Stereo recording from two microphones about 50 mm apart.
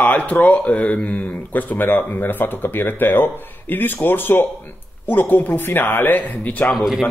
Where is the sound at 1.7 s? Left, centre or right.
Left.